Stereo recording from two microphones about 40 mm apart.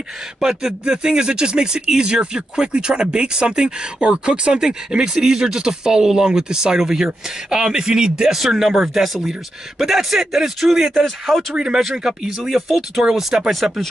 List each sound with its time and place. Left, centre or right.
0.4 s speech: centre